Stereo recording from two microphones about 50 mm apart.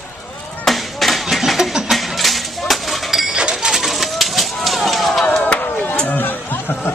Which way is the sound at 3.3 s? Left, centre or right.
Centre.